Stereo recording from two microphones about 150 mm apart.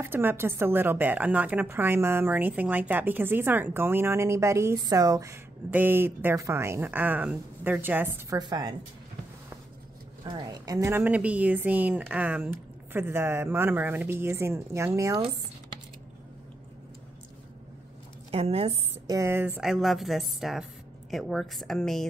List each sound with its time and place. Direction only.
0.0 s a woman's voice: 15° right (ahead or behind)
8.4 s speech: 30° right (ahead or behind)
10.2 s a woman's voice: 25° right (ahead or behind)
18.3 s a woman's voice: 40° right (ahead or behind)
19.0 s speech: 20° right (ahead or behind); by 22.0 s 5° left (ahead or behind)